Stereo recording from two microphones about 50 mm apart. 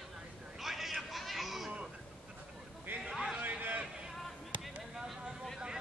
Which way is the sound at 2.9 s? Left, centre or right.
Right.